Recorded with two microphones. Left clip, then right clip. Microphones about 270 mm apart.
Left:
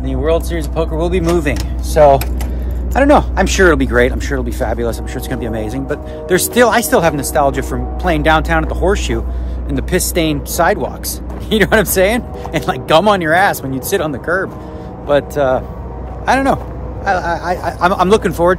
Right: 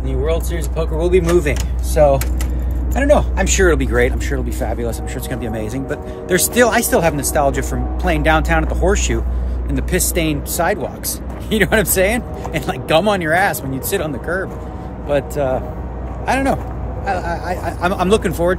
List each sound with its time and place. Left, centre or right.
0.0 s speech: centre